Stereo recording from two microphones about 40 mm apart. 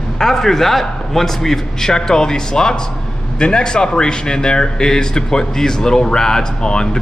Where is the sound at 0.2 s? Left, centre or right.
Centre.